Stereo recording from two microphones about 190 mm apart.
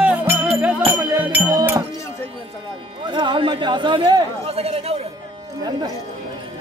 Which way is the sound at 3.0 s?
25° right (ahead or behind).